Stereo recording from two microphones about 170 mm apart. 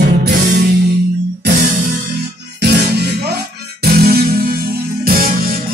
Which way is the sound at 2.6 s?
75° right (ahead or behind).